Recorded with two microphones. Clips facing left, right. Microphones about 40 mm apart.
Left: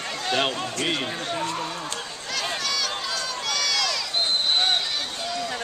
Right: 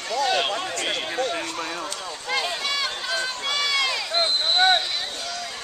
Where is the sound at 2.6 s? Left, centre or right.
Right.